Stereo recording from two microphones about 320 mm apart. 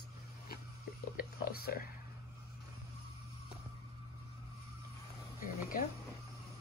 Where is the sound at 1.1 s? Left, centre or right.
Left.